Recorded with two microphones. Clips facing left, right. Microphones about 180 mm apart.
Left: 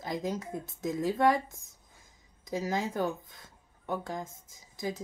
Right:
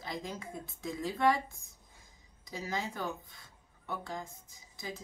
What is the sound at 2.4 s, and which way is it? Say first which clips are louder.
Speech: left 6 dB; 45° left (ahead or behind).